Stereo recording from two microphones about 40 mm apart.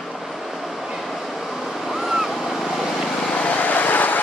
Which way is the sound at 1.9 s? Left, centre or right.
Centre.